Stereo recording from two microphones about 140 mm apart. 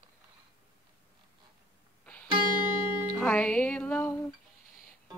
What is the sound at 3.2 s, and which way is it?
Music, 10° left (ahead or behind).